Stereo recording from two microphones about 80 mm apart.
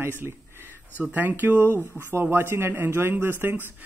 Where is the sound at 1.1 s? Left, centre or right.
Right.